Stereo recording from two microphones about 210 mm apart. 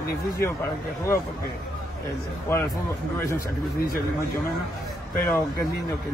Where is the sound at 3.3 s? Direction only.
40° left (ahead or behind).